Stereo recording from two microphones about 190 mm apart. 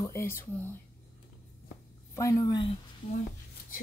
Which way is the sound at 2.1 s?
15° left (ahead or behind).